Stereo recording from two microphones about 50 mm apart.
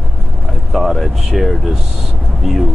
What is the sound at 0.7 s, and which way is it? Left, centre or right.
Speech, centre.